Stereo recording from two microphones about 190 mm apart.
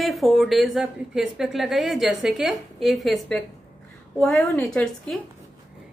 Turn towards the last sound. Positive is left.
turn(degrees=5)  # may be behind; listen again after turning